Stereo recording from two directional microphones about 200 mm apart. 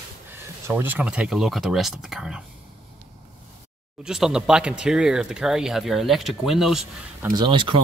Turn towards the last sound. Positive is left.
turn(degrees=-25)  # may be behind; listen again after turning